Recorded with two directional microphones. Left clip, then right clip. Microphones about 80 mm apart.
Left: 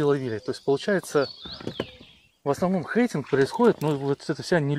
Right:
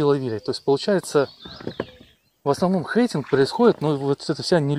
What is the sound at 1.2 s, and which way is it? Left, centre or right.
Speech, centre.